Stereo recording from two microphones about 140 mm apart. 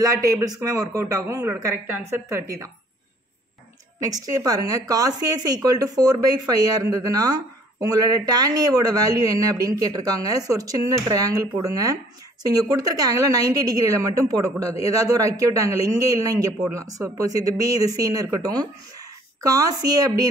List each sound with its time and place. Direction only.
0.0 s a woman's voice: 25° right (ahead or behind)
4.0 s a woman's voice: 25° right (ahead or behind)